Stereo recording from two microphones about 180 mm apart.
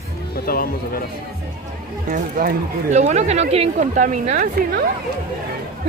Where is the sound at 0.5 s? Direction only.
55° left (ahead or behind).